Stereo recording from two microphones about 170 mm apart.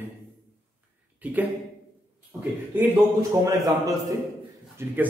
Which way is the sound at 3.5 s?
20° right (ahead or behind).